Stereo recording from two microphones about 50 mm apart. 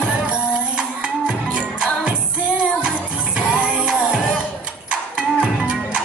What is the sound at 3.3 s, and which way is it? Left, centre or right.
Music, centre.